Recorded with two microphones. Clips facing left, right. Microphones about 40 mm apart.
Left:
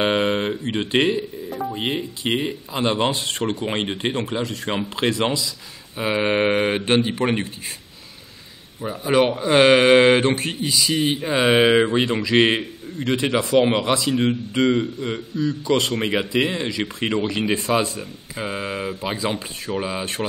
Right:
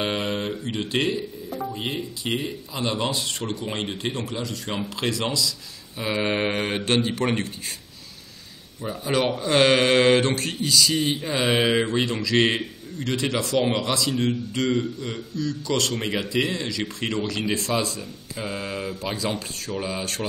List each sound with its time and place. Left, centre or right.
0.0 s speech: left
8.8 s speech: centre